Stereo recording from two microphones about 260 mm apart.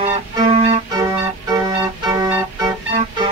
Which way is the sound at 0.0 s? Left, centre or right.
Right.